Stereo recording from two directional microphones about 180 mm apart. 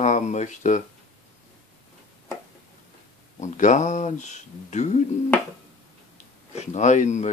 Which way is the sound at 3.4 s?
40° left (ahead or behind).